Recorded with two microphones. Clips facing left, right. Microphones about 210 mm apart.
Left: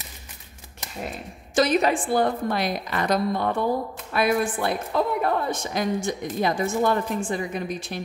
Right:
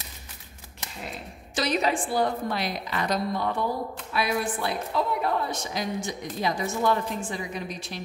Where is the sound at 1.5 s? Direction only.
50° left (ahead or behind).